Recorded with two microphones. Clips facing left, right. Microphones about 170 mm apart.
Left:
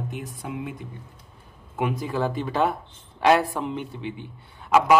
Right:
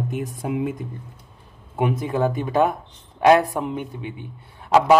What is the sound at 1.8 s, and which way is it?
Speech, 20° right (ahead or behind).